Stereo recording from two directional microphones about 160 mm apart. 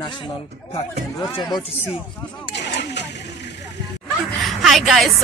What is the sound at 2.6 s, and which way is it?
Vehicle, 90° left.